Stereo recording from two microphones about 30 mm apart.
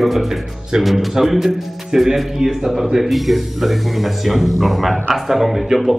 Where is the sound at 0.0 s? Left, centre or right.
Centre.